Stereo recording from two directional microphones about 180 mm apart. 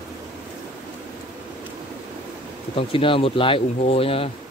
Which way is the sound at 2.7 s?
30° left (ahead or behind).